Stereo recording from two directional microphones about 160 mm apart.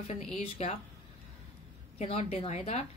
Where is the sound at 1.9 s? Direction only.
40° left (ahead or behind).